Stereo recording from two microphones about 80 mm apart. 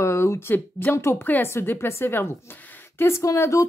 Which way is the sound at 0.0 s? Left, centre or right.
Left.